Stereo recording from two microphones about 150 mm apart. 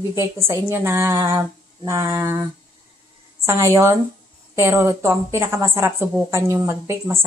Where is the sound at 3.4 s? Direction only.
20° right (ahead or behind).